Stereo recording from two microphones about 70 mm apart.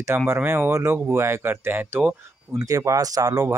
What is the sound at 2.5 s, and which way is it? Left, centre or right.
Speech, right.